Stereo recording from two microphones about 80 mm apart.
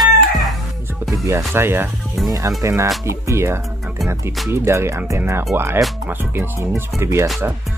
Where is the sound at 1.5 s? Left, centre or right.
Right.